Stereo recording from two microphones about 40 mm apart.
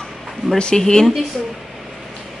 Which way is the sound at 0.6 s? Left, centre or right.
Centre.